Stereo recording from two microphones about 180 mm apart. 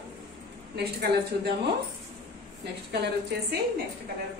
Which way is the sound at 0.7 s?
65° right (ahead or behind).